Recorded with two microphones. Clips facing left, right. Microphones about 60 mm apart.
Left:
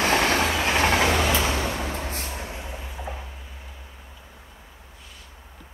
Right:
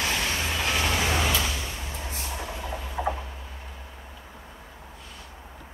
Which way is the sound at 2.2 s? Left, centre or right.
Left.